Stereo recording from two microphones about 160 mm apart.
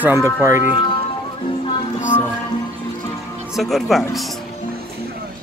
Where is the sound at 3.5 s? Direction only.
Centre (ahead or behind).